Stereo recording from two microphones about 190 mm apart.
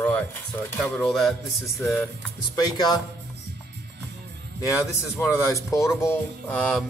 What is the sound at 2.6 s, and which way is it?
Speech, 20° left (ahead or behind).